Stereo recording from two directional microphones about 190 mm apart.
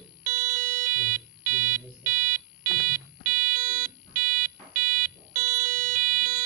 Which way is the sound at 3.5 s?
45° right (ahead or behind).